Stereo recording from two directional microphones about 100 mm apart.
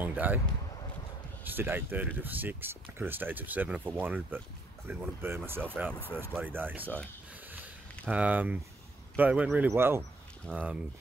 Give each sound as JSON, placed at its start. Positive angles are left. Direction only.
{"t": 0.0, "sound": "speech", "side_deg": -15}
{"t": 1.4, "sound": "speech", "side_deg": -20}
{"t": 8.1, "sound": "speech", "side_deg": -15}